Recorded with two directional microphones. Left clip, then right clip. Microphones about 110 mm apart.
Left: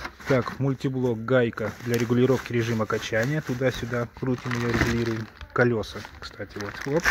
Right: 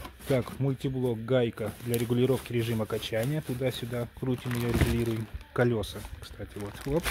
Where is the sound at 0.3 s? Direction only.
10° left (ahead or behind).